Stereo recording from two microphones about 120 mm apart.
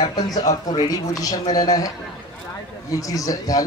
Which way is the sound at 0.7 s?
35° left (ahead or behind).